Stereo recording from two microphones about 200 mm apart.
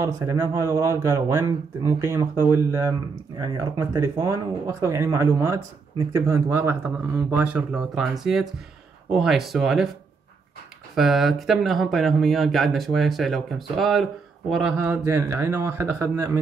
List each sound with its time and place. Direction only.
0.0 s speech: 15° right (ahead or behind); by 9.8 s centre (ahead or behind)
11.0 s speech: centre (ahead or behind)